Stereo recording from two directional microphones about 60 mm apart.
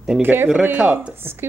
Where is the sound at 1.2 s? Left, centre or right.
Right.